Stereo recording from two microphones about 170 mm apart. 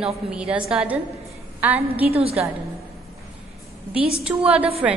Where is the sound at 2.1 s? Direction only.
35° right (ahead or behind).